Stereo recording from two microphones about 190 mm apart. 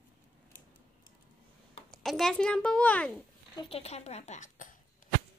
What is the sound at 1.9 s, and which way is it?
A child's voice, centre (ahead or behind).